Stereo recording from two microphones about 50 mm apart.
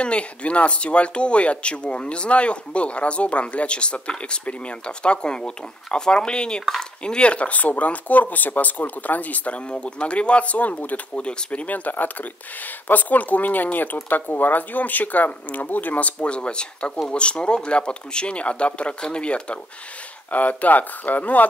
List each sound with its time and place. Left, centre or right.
0.0 s speech: left
9.7 s speech: left
11.1 s speech: left
20.2 s speech: left